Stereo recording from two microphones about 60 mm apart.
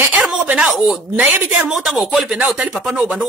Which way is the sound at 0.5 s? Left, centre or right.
Centre.